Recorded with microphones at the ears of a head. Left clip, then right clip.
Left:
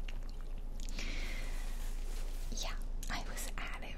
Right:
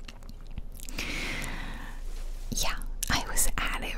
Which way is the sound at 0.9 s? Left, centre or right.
Right.